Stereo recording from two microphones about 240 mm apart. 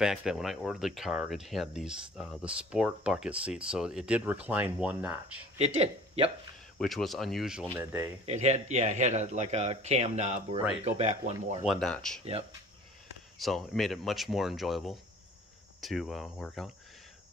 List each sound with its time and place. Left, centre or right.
0.0 s speech: centre
5.8 s speech: right
6.8 s speech: centre
8.3 s speech: right
11.6 s speech: centre
13.4 s speech: centre